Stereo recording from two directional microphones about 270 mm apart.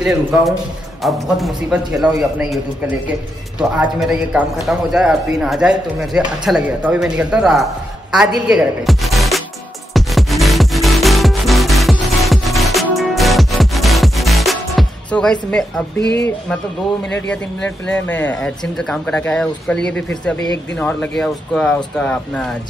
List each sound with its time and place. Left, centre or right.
0.0 s a man's voice: centre
9.9 s music: centre
16.0 s speech: left
17.3 s a man's voice: centre